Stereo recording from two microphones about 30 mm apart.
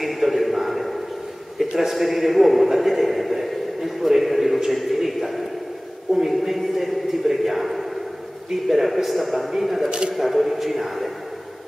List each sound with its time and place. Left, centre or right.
0.0 s a sound: centre
4.6 s a man's voice: centre
9.8 s speech: right
10.1 s a man's voice: centre